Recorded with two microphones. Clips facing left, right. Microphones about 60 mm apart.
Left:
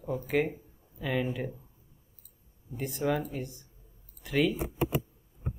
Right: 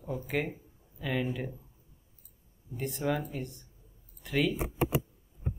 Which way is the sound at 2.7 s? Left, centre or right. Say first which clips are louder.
Left 2 dB; centre.